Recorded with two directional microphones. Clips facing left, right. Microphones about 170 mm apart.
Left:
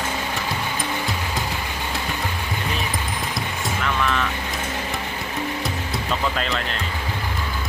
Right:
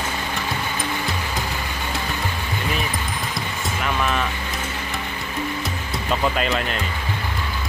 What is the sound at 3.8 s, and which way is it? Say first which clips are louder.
Vehicle: right 1 dB; 15° right (ahead or behind).